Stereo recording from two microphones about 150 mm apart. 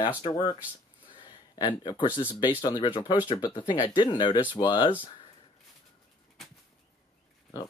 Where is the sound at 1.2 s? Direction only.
30° left (ahead or behind).